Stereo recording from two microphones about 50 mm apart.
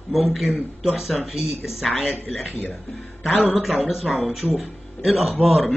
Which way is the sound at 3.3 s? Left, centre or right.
Left.